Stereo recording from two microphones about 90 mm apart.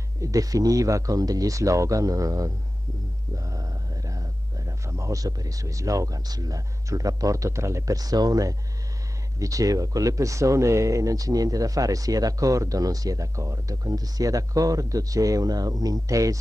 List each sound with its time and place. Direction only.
0.2 s speech: 40° right (ahead or behind)